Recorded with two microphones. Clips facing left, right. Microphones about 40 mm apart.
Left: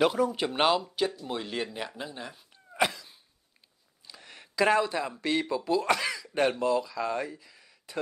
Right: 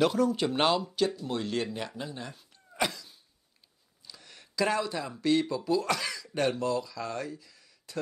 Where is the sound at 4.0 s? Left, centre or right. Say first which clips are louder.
Left 2 dB; left.